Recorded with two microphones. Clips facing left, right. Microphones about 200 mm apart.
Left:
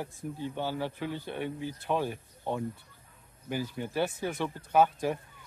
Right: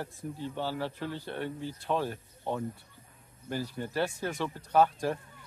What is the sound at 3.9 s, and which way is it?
Speech, 15° left (ahead or behind).